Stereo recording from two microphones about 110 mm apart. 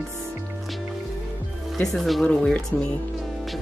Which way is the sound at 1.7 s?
Centre (ahead or behind).